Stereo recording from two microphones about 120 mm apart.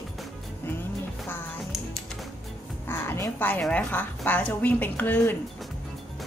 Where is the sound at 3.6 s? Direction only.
10° left (ahead or behind).